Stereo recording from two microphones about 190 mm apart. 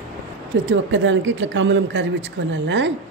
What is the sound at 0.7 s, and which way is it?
Speech, 80° right.